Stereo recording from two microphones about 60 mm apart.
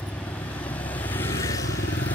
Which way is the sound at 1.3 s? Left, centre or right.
Left.